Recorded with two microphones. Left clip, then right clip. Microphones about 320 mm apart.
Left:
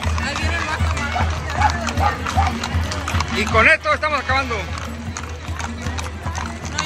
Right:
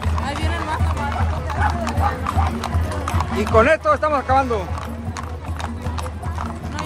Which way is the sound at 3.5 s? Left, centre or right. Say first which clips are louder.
Even; centre.